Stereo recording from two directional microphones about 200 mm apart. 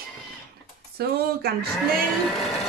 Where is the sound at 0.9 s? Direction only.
50° right (ahead or behind).